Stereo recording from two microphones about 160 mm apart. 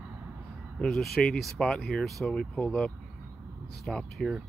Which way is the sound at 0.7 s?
5° left (ahead or behind).